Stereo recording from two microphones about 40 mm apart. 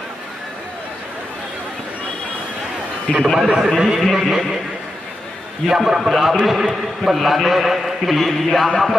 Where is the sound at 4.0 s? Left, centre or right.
Centre.